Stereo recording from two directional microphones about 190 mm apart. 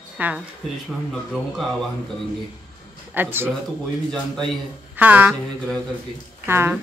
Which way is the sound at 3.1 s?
10° right (ahead or behind).